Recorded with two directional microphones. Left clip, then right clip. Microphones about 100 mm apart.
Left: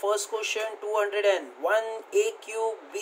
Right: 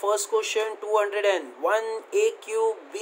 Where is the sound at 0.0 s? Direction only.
20° right (ahead or behind).